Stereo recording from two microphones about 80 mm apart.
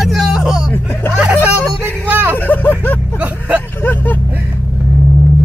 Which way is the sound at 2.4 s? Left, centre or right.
Left.